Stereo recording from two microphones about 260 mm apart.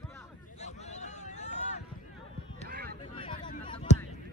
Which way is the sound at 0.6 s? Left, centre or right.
Left.